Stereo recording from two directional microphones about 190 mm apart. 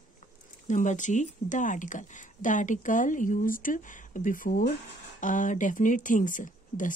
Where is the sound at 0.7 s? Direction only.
40° left (ahead or behind).